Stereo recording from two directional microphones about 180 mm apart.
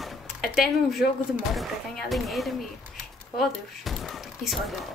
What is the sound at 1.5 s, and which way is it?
Speech, centre (ahead or behind).